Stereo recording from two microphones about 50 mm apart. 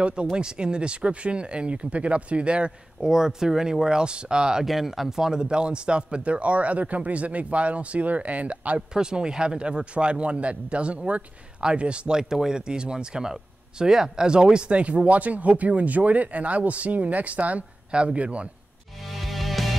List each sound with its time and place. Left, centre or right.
0.0 s speech: right
3.1 s speech: centre; by 8.8 s right
8.9 s speech: centre
12.2 s speech: centre
19.1 s music: centre